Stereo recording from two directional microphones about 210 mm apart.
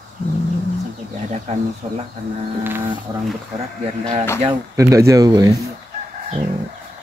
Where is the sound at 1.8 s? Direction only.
25° right (ahead or behind).